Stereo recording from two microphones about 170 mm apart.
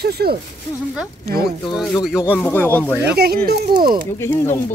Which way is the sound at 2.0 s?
5° right (ahead or behind).